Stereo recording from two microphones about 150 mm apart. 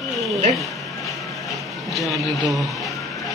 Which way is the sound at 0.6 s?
Centre (ahead or behind).